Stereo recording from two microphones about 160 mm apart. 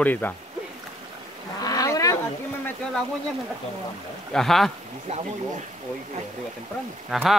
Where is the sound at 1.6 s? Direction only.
20° left (ahead or behind).